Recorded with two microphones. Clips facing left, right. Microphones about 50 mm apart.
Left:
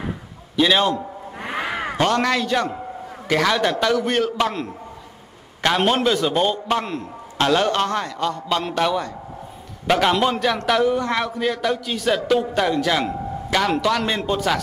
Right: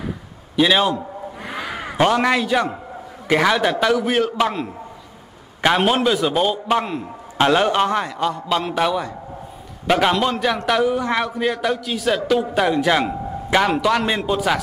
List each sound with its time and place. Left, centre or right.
0.6 s a man's voice: centre
1.4 s a sound: left
2.0 s a man's voice: centre